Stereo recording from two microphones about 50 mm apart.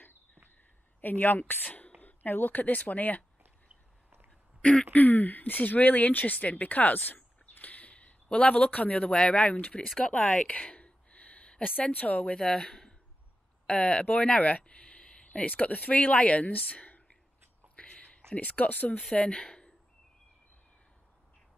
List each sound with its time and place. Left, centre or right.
1.0 s a woman's voice: left
4.6 s speech: left
4.9 s speech: left
10.0 s speech: centre
10.3 s a sound: left
11.9 s speech: left
12.3 s speech: centre
14.0 s a sound: left
15.4 s speech: left
17.7 s a sound: left
18.3 s speech: left